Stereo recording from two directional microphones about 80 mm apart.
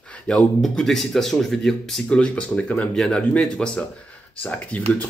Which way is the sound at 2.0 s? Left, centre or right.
Centre.